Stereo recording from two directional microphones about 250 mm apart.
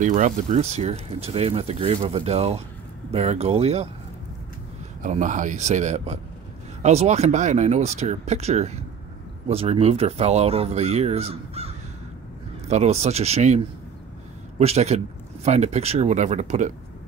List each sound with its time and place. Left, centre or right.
0.0 s speech: right
5.0 s speech: right
14.6 s speech: right